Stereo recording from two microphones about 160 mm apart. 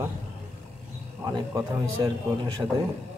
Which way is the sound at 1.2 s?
25° right (ahead or behind).